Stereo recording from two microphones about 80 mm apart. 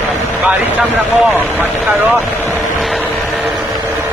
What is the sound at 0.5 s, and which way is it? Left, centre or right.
Speech, centre.